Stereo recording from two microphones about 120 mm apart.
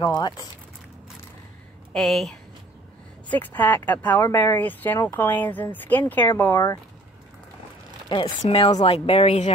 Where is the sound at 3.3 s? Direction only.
15° left (ahead or behind).